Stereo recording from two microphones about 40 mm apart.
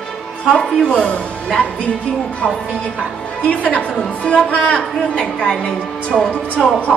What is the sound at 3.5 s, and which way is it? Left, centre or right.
A woman's voice, left.